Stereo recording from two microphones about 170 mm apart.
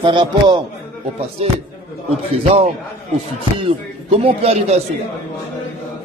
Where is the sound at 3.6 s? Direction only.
35° right (ahead or behind).